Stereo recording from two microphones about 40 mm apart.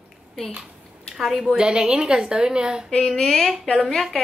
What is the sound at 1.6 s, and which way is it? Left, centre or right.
Speech, centre.